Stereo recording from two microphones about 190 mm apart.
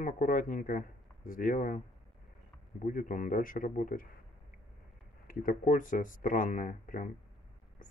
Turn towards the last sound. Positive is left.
turn(degrees=45)  # may be behind; listen again after turning